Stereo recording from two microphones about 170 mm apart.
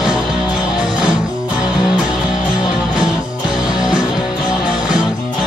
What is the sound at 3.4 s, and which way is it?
Music, 5° right (ahead or behind).